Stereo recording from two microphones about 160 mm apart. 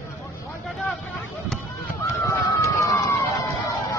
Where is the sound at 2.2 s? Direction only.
20° left (ahead or behind).